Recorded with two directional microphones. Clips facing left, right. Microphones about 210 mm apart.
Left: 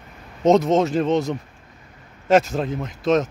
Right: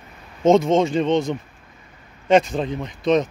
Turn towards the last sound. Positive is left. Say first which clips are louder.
# right 1 dB
turn(degrees=0)  # may be behind; listen again after turning